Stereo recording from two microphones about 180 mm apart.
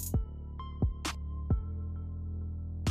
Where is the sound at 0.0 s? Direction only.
Centre (ahead or behind).